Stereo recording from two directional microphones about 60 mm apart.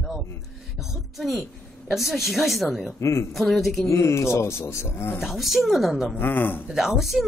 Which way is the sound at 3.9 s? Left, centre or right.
Left.